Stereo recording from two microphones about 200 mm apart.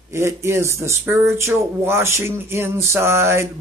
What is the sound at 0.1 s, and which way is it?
Speech, 15° right (ahead or behind).